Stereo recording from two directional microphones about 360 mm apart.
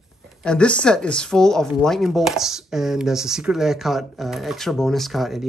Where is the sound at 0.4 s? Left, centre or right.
Centre.